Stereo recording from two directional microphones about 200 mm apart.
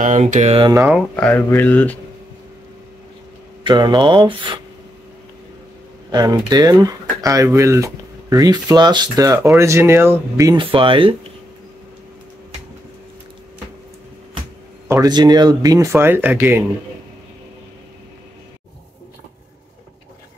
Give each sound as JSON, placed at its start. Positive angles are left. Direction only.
{"t": 0.0, "sound": "mantra", "side_deg": -40}
{"t": 0.8, "sound": "speech", "side_deg": 0}
{"t": 3.6, "sound": "speech", "side_deg": -20}
{"t": 6.1, "sound": "speech", "side_deg": -20}
{"t": 14.9, "sound": "speech", "side_deg": -20}